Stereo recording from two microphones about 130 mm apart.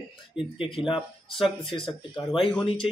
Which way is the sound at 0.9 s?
Centre (ahead or behind).